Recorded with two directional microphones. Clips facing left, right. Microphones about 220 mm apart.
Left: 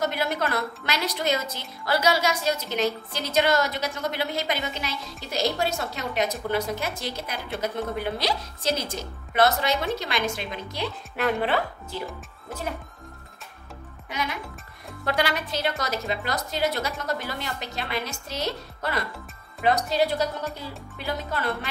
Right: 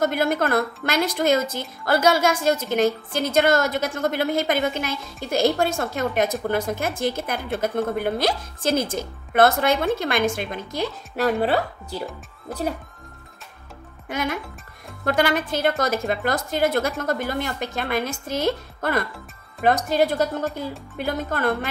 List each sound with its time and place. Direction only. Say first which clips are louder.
0.0 s a woman's voice: right 5 dB; 50° right (ahead or behind)
14.0 s a woman's voice: right 5 dB; 50° right (ahead or behind)